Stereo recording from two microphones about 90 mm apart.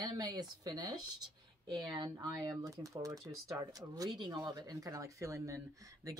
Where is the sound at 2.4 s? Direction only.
40° right (ahead or behind).